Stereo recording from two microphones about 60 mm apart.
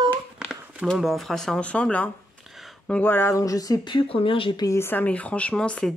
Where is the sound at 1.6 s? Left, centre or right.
Centre.